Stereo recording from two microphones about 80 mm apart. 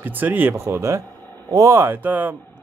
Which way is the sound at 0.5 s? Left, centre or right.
Right.